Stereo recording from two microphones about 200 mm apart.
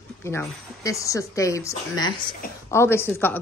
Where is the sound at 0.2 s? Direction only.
15° left (ahead or behind).